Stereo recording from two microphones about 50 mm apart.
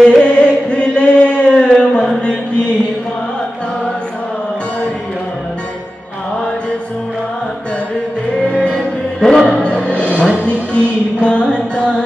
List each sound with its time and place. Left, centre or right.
0.0 s chant: centre
8.6 s music: centre